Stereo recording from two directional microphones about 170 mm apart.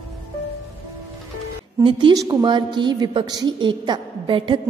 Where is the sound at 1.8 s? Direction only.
30° right (ahead or behind).